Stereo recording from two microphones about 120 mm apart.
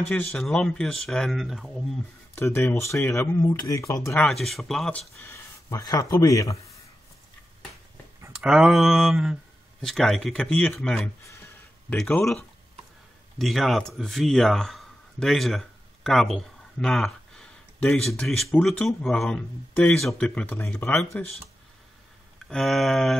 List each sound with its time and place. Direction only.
0.1 s speech: 10° left (ahead or behind)
2.3 s speech: 20° left (ahead or behind)
4.2 s speech: centre (ahead or behind)
5.2 s speech: 25° left (ahead or behind)
8.3 s speech: 5° right (ahead or behind)
11.2 s a sound: 20° left (ahead or behind)
12.0 s a man's voice: 5° left (ahead or behind)
22.5 s speech: 5° left (ahead or behind)